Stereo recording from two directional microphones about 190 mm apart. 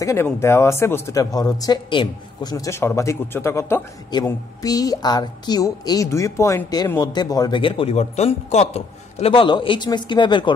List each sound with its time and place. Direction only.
0.0 s speech: 15° left (ahead or behind)